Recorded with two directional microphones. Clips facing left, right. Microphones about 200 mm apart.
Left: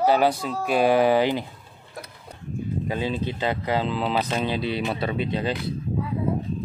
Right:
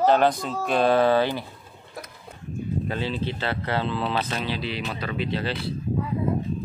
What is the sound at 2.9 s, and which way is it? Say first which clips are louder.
Speech: left 2 dB; 15° left (ahead or behind).